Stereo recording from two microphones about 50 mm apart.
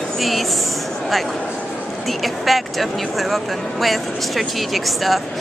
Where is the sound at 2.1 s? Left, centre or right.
Centre.